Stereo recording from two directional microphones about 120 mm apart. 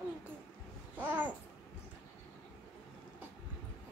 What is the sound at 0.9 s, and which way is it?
Babbling, 15° right (ahead or behind).